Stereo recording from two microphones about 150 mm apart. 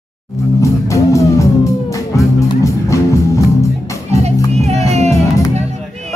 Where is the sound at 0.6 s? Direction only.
20° left (ahead or behind).